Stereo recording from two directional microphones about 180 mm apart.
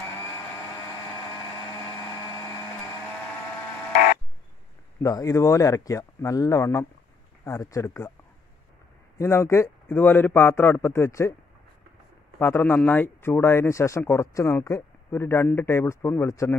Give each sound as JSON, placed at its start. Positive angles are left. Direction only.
{"t": 5.0, "sound": "speech", "side_deg": 20}
{"t": 9.2, "sound": "speech", "side_deg": 15}
{"t": 12.4, "sound": "speech", "side_deg": 10}